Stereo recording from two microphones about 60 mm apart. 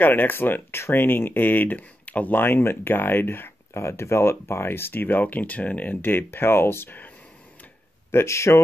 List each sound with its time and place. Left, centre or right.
0.0 s speech: left
8.1 s speech: left